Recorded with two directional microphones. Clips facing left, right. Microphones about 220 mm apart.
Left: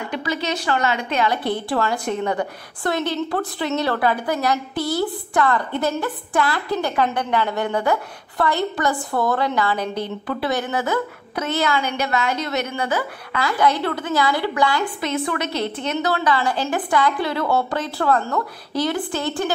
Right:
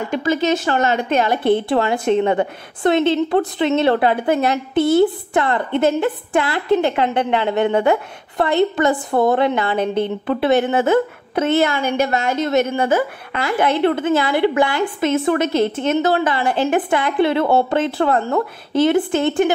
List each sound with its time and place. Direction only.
0.1 s a woman's voice: 45° right (ahead or behind)
1.7 s a woman's voice: 20° right (ahead or behind)
11.7 s a woman's voice: 50° right (ahead or behind)
12.9 s a woman's voice: 25° right (ahead or behind)
15.2 s a woman's voice: 50° right (ahead or behind)
16.1 s a woman's voice: 20° right (ahead or behind)